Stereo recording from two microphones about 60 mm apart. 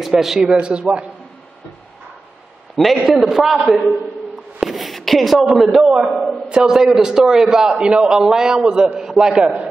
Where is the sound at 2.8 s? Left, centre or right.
Centre.